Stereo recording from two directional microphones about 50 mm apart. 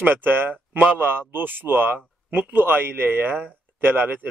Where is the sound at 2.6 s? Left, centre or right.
Right.